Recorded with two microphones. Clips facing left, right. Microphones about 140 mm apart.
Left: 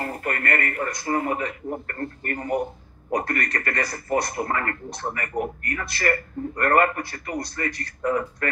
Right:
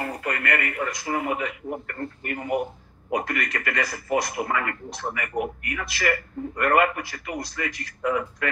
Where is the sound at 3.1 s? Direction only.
40° left (ahead or behind).